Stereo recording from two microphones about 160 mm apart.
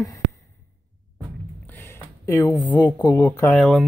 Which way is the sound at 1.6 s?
15° left (ahead or behind).